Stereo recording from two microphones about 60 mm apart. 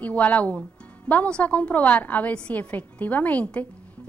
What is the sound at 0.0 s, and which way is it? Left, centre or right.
Speech, left.